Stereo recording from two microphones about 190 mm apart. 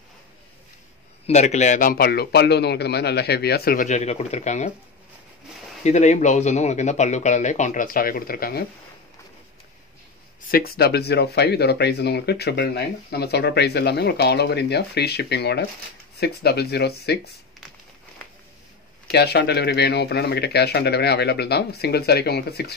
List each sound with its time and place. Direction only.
1.2 s a man's voice: 35° left (ahead or behind)
5.9 s speech: 40° left (ahead or behind)
10.5 s speech: 55° left (ahead or behind)
19.0 s speech: 60° left (ahead or behind)